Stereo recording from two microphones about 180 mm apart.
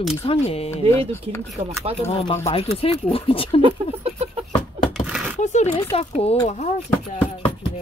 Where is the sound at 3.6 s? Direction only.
35° right (ahead or behind).